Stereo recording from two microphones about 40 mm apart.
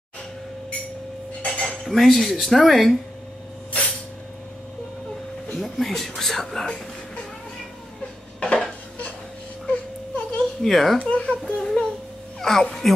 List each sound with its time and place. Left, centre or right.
1.4 s cutlery: left
1.9 s speech: centre
5.5 s speech: centre
8.4 s dishes: left
9.7 s wail: left
10.6 s speech: centre
11.0 s a sound: left
12.4 s speech: centre